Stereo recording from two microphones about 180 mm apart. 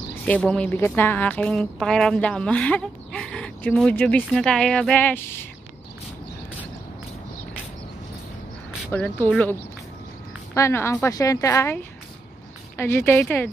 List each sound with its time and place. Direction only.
0.1 s a woman's voice: 10° left (ahead or behind)
8.9 s a woman's voice: 10° left (ahead or behind)